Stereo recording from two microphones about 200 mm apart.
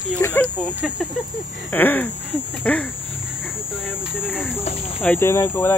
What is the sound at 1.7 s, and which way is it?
Speech, 10° left (ahead or behind).